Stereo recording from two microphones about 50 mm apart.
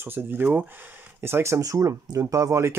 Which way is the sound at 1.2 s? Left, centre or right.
Right.